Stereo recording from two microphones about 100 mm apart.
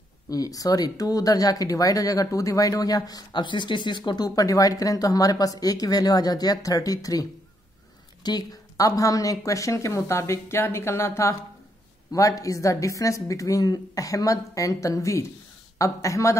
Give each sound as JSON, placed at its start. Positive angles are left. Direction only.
{"t": 0.3, "sound": "speech", "side_deg": 35}